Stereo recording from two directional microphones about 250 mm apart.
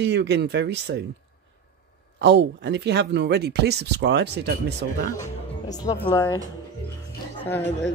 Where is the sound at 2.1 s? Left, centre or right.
Right.